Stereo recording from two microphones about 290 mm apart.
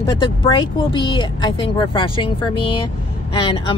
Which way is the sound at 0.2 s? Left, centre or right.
Centre.